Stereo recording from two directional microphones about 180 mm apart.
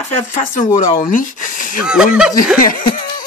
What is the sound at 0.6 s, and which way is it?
Speech, 45° left (ahead or behind).